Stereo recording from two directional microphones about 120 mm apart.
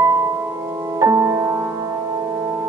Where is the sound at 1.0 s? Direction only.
25° right (ahead or behind).